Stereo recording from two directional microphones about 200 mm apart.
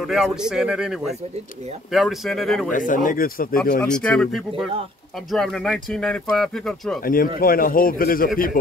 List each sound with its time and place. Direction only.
0.0 s speech: centre (ahead or behind)
2.7 s speech: 40° left (ahead or behind)
3.8 s speech: 5° left (ahead or behind)
7.0 s a man's voice: 45° left (ahead or behind)